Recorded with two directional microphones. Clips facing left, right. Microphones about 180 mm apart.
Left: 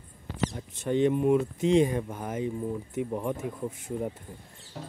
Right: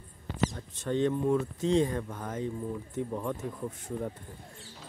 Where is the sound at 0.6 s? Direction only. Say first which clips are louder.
Left 7 dB; 15° left (ahead or behind).